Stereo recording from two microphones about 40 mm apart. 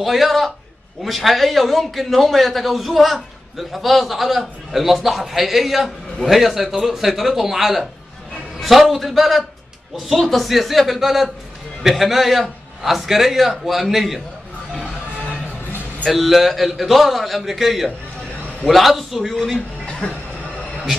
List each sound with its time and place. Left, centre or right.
0.0 s a man's voice: centre
16.1 s a man's voice: centre
19.9 s speech: centre